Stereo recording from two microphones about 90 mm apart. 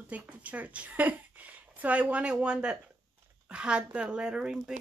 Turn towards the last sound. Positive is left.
turn(degrees=-10)  # may be behind; listen again after turning